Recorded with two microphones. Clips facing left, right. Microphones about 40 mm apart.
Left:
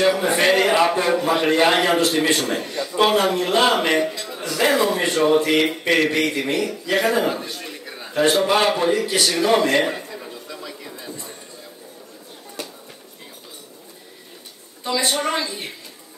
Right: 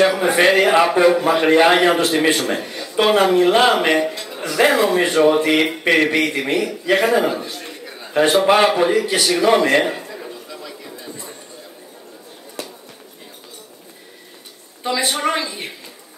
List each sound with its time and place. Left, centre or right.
0.1 s a man's voice: centre
8.5 s a sound: centre
14.9 s a man's voice: centre